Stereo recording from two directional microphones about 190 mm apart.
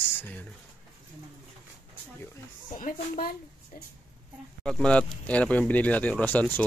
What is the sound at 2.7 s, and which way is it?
Speech, 50° left (ahead or behind).